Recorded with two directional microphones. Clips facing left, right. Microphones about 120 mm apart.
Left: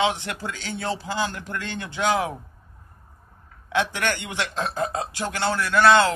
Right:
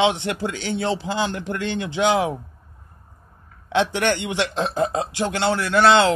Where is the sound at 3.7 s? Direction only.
25° right (ahead or behind).